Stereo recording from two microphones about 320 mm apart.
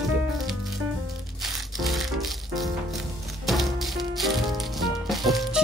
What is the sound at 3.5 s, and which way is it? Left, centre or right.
Music, centre.